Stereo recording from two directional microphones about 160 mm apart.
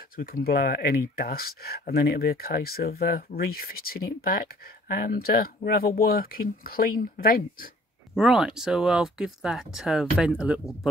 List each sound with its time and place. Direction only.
0.2 s speech: 70° left (ahead or behind)
8.2 s speech: 5° right (ahead or behind)